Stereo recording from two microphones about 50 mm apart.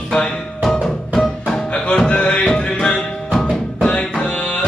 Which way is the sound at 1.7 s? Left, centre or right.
Centre.